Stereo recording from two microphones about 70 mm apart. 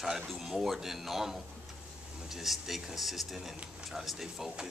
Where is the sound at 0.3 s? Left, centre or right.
Centre.